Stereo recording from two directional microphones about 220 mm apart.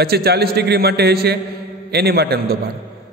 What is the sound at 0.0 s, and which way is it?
A man's voice, 45° right (ahead or behind).